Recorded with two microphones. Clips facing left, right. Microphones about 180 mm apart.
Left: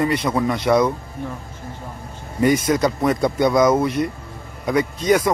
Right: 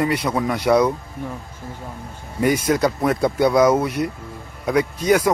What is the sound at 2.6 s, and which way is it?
Speech, 5° right (ahead or behind).